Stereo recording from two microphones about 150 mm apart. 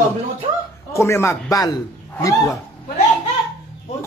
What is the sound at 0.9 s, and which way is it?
Speech, 20° left (ahead or behind).